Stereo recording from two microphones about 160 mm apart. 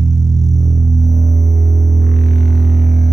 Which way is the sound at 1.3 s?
20° right (ahead or behind).